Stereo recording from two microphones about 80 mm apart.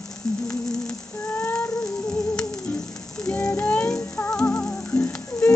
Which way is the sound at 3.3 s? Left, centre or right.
Left.